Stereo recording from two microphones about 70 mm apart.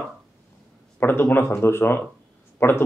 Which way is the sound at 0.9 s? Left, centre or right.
Left.